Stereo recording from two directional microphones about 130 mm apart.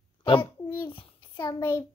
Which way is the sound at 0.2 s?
40° left (ahead or behind).